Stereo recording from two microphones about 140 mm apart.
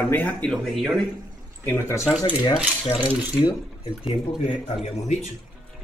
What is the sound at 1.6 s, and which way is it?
Speech, 20° left (ahead or behind).